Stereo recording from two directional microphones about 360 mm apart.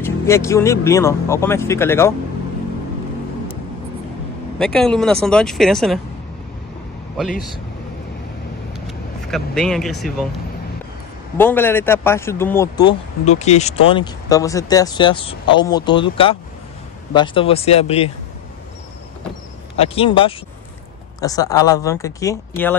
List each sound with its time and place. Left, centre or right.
0.0 s speech: centre
4.6 s speech: centre
8.8 s speech: centre
11.3 s speech: centre
19.8 s speech: centre